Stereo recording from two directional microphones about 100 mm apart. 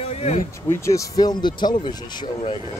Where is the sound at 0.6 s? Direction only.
30° left (ahead or behind); by 2.2 s 45° left (ahead or behind).